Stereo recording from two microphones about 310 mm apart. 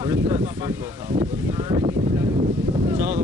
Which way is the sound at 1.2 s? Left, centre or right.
Centre.